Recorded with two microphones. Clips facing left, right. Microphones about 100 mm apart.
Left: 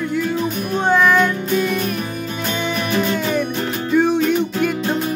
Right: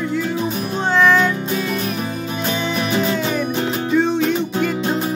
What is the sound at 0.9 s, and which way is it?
Music, 10° left (ahead or behind).